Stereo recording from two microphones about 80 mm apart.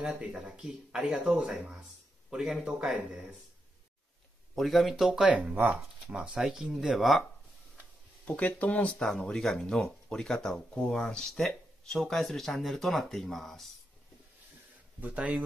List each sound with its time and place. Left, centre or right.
0.0 s speech: centre
4.6 s speech: centre
8.3 s speech: centre
9.0 s speech: centre
15.0 s speech: centre